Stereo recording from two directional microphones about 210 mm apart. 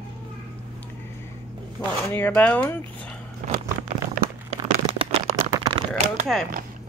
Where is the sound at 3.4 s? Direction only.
40° right (ahead or behind).